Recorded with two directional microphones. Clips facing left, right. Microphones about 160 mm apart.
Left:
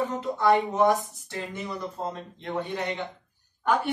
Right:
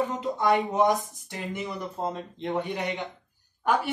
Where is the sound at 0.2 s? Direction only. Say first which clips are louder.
Left 3 dB; 15° right (ahead or behind).